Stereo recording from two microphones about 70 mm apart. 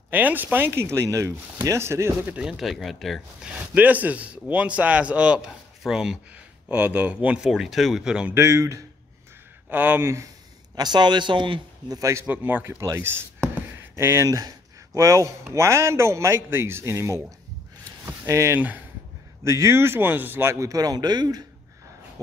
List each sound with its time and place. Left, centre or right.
0.1 s a man's voice: right
2.4 s speech: centre
3.7 s speech: right
5.8 s speech: centre
6.7 s speech: right
7.4 s speech: centre
8.4 s speech: right
9.7 s speech: right
10.8 s a man's voice: right
11.9 s speech: right
12.3 s speech: right
13.9 s a man's voice: right
18.2 s a man's voice: right
20.5 s a man's voice: right